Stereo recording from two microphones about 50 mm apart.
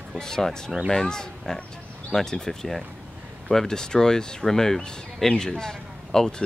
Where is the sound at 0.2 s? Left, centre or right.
Centre.